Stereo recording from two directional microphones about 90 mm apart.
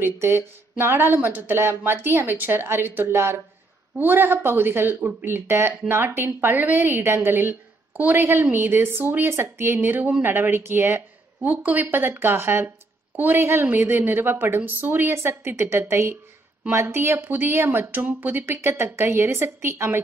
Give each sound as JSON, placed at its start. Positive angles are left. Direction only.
{"t": 0.0, "sound": "speech", "side_deg": -25}